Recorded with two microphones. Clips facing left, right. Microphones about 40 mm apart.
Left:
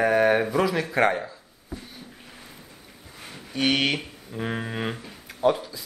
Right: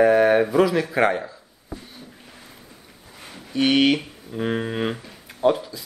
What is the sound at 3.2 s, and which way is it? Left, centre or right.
Speech, centre.